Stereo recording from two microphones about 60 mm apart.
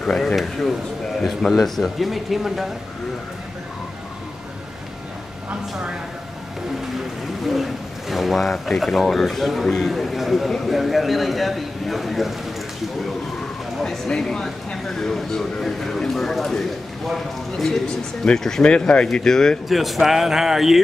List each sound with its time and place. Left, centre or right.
0.0 s speech: centre
0.4 s speech: centre
5.5 s a woman's voice: centre
7.4 s speech: centre
13.8 s speech: centre
19.7 s speech: centre